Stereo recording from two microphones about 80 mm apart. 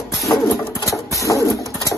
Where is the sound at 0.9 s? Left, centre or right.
Left.